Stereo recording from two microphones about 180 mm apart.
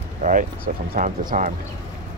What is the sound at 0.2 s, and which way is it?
Speech, 45° right (ahead or behind).